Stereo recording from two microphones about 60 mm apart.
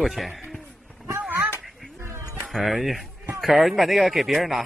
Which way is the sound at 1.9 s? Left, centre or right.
Right.